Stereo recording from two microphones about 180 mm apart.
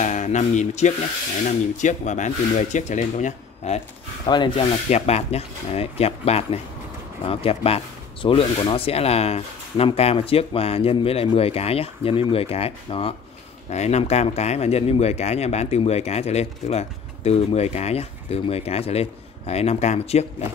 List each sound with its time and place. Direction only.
0.0 s a sound: 40° left (ahead or behind)
1.8 s speech: 45° left (ahead or behind)
4.3 s speech: 25° left (ahead or behind)
4.8 s speech: 40° left (ahead or behind)